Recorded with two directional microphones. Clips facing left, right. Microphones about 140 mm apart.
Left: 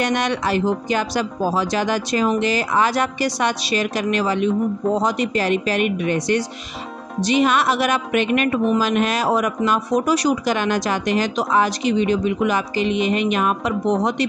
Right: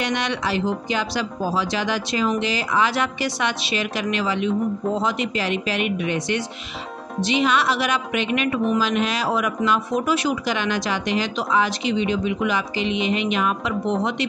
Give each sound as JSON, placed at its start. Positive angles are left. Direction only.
{"t": 0.0, "sound": "speech", "side_deg": 45}